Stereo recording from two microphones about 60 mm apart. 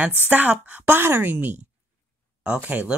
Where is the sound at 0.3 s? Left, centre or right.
Right.